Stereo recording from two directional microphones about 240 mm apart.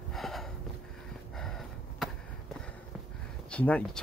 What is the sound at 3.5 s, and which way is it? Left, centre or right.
Speech, centre.